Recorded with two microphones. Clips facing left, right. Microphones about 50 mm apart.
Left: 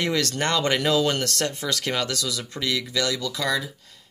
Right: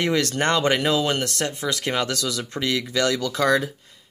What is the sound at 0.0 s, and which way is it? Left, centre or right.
Speech, right.